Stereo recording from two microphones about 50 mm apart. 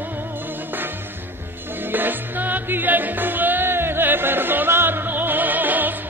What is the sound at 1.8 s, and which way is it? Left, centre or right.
Music, right.